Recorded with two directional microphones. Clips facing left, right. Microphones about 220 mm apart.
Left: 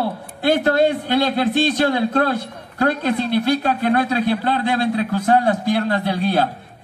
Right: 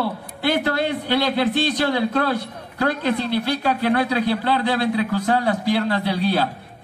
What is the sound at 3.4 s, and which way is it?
A man's voice, 50° left (ahead or behind).